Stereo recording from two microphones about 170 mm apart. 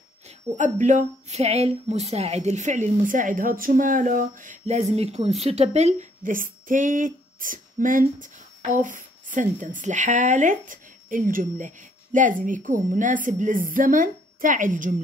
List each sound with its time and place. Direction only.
0.6 s a woman's voice: 45° right (ahead or behind)